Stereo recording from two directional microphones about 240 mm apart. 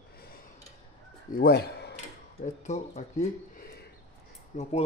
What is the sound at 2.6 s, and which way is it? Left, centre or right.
Speech, left.